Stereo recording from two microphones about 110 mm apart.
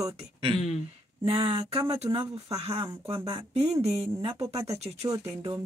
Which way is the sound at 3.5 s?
70° right (ahead or behind).